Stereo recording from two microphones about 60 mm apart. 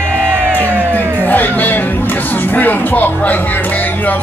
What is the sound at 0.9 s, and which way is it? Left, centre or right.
Music, left.